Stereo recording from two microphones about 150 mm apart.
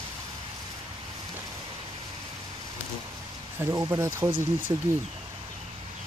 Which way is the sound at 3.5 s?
20° right (ahead or behind).